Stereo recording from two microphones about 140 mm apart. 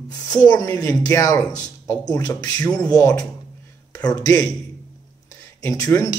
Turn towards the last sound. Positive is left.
turn(degrees=25)  # may be behind; listen again after turning